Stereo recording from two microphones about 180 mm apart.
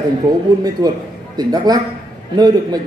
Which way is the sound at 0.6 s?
20° right (ahead or behind).